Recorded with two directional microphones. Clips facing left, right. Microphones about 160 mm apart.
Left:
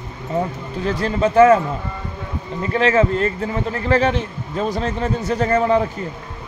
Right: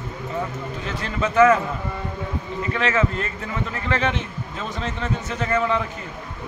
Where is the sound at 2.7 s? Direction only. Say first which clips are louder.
Left 7 dB; 35° left (ahead or behind).